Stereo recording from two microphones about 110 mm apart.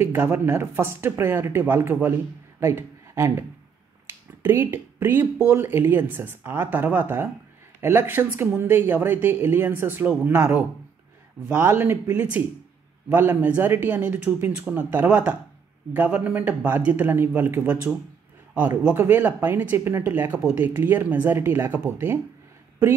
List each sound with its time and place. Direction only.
0.0 s speech: 20° right (ahead or behind)
4.1 s finger snapping: 20° right (ahead or behind)
5.4 s a man's voice: 20° right (ahead or behind)